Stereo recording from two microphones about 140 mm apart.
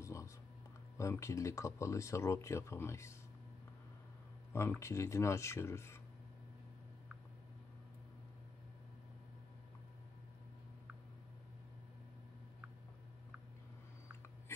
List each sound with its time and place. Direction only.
0.0 s a sound: 20° left (ahead or behind)
0.9 s speech: 20° left (ahead or behind)
4.5 s speech: 20° left (ahead or behind)